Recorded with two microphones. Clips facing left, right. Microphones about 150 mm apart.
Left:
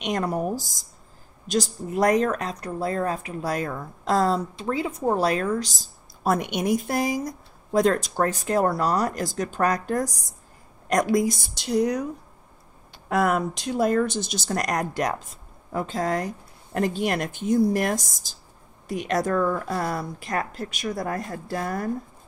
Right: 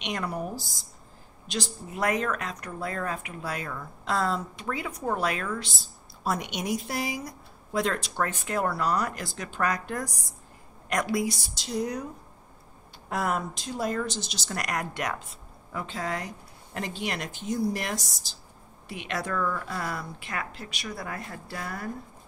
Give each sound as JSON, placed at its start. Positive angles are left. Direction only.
{"t": 0.0, "sound": "a woman's voice", "side_deg": 45}
{"t": 6.3, "sound": "a woman's voice", "side_deg": 55}
{"t": 13.1, "sound": "a woman's voice", "side_deg": 70}